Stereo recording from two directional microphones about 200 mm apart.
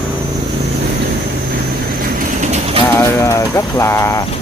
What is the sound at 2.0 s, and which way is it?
Bird, 40° right (ahead or behind).